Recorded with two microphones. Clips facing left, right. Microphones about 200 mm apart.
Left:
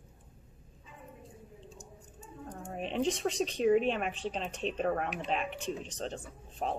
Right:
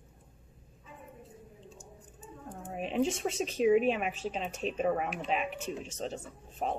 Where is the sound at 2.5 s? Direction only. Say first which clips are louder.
Right 3 dB; 5° right (ahead or behind).